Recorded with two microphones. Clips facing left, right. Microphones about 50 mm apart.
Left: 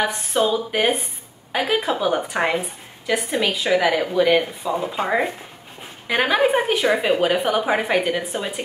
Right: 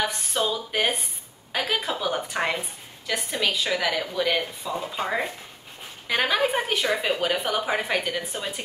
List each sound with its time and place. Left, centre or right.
0.0 s a woman's voice: left